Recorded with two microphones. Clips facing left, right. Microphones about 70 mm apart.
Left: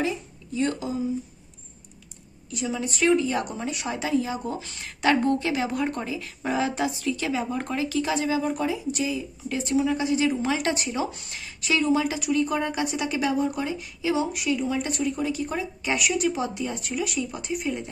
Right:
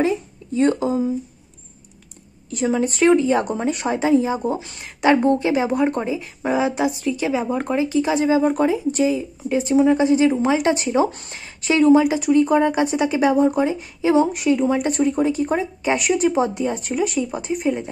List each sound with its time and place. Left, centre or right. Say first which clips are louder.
0.6 s a woman's voice: right 8 dB; right
2.5 s a woman's voice: right 9 dB; right
11.1 s a woman's voice: right 3 dB; right